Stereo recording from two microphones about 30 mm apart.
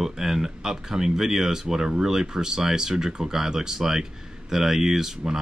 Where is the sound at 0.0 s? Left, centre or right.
Centre.